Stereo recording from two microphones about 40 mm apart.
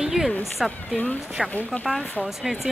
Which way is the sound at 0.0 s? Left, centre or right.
Centre.